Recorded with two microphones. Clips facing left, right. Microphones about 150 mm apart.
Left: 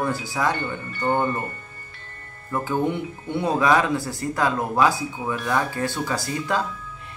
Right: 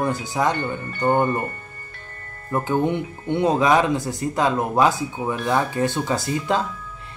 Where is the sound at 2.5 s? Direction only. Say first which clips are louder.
Right 3 dB; 20° right (ahead or behind).